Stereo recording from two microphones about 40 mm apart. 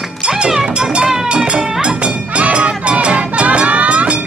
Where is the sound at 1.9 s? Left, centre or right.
Right.